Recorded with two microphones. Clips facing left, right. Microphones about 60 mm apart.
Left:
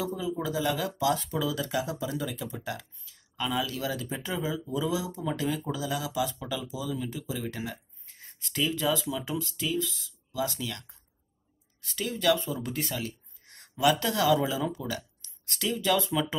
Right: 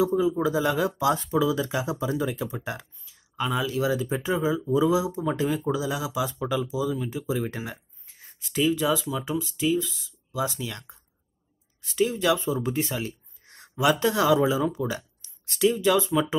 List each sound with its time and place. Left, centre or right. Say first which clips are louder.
0.0 s speech: right 9 dB; right
6.3 s speech: right 8 dB; right
8.2 s speech: right 5 dB; centre
11.9 s speech: right 4 dB; centre